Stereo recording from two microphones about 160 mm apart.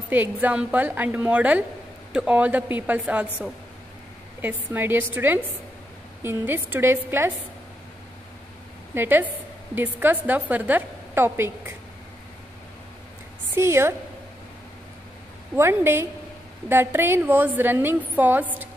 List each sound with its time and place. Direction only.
0.1 s a woman's voice: 10° right (ahead or behind)
8.9 s a woman's voice: 15° right (ahead or behind)
13.6 s a woman's voice: 15° right (ahead or behind)
15.5 s a woman's voice: 15° right (ahead or behind)